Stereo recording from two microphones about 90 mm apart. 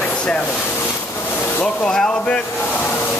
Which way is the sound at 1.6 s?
10° left (ahead or behind).